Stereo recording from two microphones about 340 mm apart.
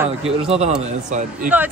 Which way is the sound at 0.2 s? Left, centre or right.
Centre.